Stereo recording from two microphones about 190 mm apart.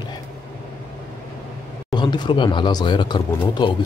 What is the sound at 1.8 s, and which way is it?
Speech, 25° left (ahead or behind).